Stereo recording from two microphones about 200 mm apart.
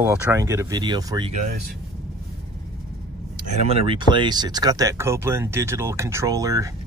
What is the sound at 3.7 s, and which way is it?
Speech, 30° right (ahead or behind).